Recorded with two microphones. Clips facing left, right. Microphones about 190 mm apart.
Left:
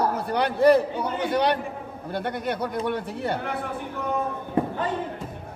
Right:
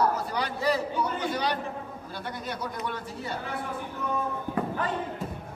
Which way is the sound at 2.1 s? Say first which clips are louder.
Left 9 dB; 60° left (ahead or behind).